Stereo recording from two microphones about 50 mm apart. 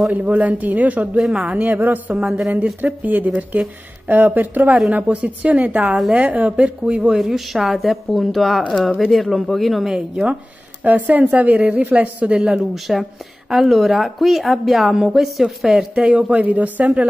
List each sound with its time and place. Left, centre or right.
0.1 s a man's voice: right
2.1 s a man's voice: right
4.1 s a man's voice: right
6.8 s speech: centre
7.2 s speech: centre
9.8 s speech: centre
10.8 s speech: right
12.4 s speech: centre
12.7 s speech: centre
15.9 s speech: centre
16.8 s speech: centre